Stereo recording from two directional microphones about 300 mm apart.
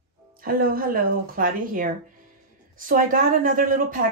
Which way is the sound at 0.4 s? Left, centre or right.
Right.